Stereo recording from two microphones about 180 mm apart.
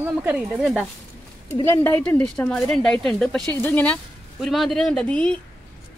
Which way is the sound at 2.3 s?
5° left (ahead or behind).